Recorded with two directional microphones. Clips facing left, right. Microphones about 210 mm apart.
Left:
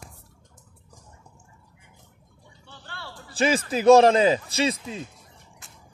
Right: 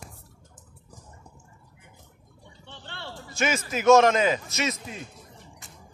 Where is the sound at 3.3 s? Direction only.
35° left (ahead or behind).